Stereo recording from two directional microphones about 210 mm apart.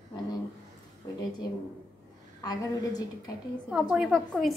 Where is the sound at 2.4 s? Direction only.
20° left (ahead or behind).